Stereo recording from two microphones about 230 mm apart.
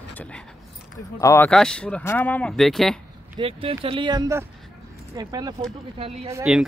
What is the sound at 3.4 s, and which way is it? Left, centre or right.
Speech, right.